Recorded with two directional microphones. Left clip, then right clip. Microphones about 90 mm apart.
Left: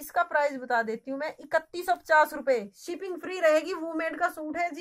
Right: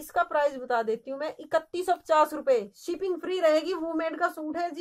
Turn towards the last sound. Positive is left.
turn(degrees=-30)  # may be behind; listen again after turning